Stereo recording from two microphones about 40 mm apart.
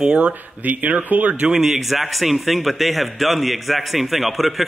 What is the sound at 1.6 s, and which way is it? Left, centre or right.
Speech, centre.